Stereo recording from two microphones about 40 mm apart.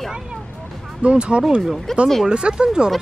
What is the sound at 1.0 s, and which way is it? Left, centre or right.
Speech, right.